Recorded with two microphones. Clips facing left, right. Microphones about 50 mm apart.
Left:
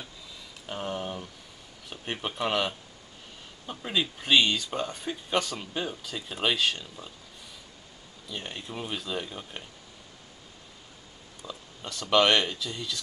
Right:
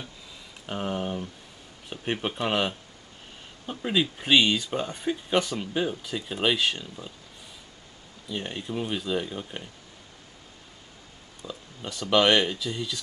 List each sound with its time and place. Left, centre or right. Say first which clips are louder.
0.7 s speech: right 3 dB; centre
8.3 s speech: right 5 dB; centre
11.4 s speech: right 2 dB; centre
11.8 s speech: right 1 dB; centre